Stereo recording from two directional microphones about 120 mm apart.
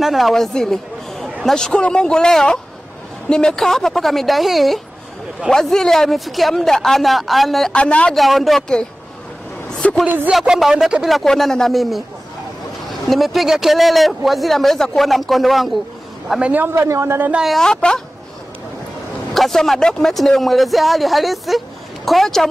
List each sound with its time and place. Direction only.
0.0 s speech: centre (ahead or behind)
9.7 s a sound: 5° left (ahead or behind)
10.0 s a man's voice: 15° right (ahead or behind)
10.3 s speech: centre (ahead or behind)
13.0 s a man's voice: centre (ahead or behind); by 17.4 s 20° right (ahead or behind)
17.4 s speech: centre (ahead or behind)
19.3 s speech: centre (ahead or behind)